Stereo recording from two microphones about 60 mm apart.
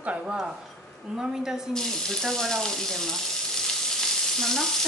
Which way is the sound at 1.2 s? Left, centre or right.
Centre.